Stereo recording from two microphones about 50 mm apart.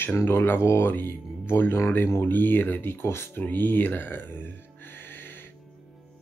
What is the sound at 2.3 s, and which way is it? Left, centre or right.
Speech, left.